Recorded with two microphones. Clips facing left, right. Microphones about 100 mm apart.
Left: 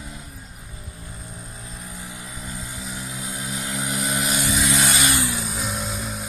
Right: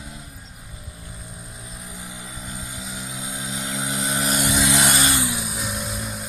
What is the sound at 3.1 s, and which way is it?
Vehicle, 20° right (ahead or behind).